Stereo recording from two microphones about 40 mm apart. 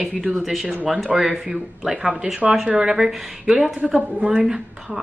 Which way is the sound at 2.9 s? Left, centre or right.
Centre.